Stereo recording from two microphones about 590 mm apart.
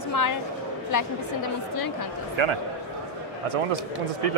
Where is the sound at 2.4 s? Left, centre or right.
Right.